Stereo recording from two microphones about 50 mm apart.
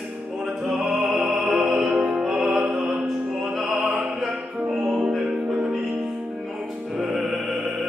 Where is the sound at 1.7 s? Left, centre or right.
Centre.